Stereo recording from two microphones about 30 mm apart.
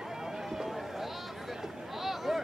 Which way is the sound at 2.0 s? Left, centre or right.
Centre.